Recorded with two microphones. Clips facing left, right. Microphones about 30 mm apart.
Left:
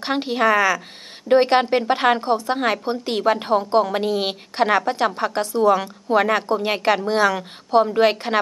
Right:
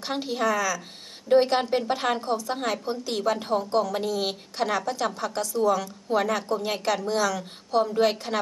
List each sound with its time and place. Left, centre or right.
0.0 s a woman's voice: left